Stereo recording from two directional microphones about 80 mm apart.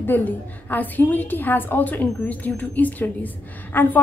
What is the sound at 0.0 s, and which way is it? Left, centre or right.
A woman's voice, left.